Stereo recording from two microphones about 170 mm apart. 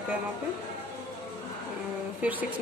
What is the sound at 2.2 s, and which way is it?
Speech, 10° right (ahead or behind).